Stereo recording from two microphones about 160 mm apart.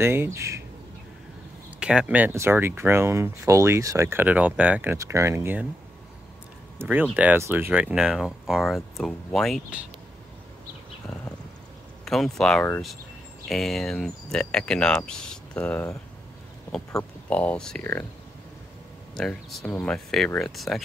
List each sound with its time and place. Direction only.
0.0 s speech: 15° right (ahead or behind)
1.8 s speech: 5° right (ahead or behind)
6.8 s speech: 10° right (ahead or behind)
12.0 s speech: centre (ahead or behind)
17.3 s speech: 10° left (ahead or behind)
19.1 s speech: 5° left (ahead or behind)